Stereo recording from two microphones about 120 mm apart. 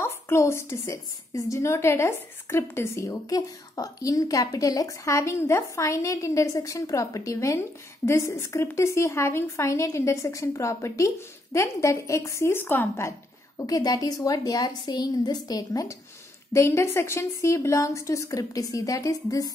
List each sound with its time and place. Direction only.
0.0 s a woman's voice: 20° left (ahead or behind)
13.6 s a woman's voice: 30° left (ahead or behind)